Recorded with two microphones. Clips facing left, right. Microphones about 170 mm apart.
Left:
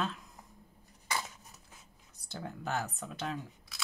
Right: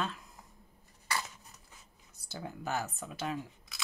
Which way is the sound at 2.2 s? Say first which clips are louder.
Even; 5° right (ahead or behind).